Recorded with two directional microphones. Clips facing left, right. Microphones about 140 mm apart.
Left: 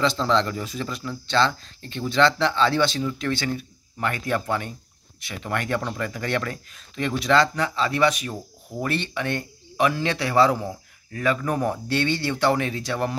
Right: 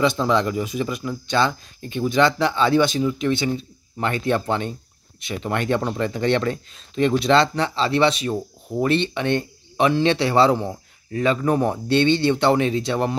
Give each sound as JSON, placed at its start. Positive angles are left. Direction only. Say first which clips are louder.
{"t": 0.0, "sound": "speech", "louder": "right 2 dB", "side_deg": -15}